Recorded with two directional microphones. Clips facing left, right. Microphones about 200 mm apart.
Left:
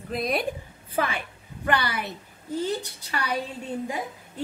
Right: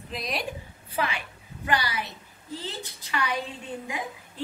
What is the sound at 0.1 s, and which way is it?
A woman's voice, 55° left (ahead or behind).